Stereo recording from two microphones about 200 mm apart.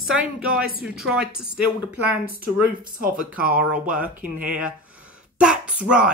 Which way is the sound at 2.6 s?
45° right (ahead or behind).